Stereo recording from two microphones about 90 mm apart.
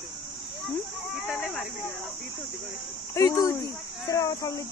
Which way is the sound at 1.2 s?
Centre (ahead or behind).